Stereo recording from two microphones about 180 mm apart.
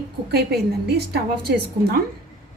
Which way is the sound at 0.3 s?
60° right (ahead or behind).